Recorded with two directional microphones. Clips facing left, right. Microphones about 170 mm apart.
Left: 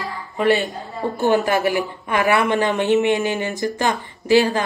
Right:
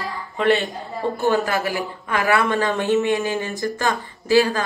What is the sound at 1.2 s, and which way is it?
Speech, 20° left (ahead or behind).